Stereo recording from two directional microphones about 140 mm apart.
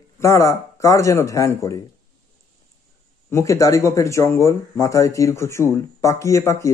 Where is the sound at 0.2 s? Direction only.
20° left (ahead or behind).